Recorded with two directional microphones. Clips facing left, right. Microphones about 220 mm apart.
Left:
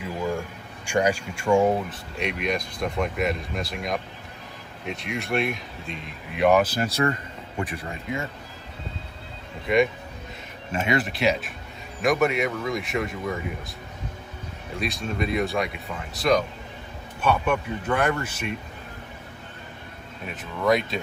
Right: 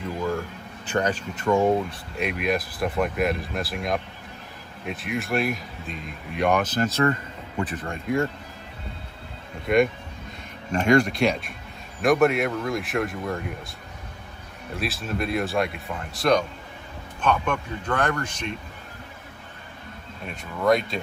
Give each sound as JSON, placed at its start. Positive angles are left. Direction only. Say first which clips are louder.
{"t": 0.0, "sound": "speech", "louder": "right 1 dB", "side_deg": 10}
{"t": 9.7, "sound": "speech", "louder": "right 1 dB", "side_deg": 0}
{"t": 14.8, "sound": "a man's voice", "louder": "even", "side_deg": -5}
{"t": 20.6, "sound": "speech", "louder": "right 1 dB", "side_deg": 0}